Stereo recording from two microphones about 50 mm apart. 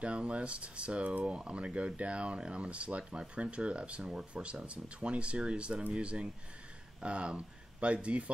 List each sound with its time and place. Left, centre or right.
0.0 s speech: right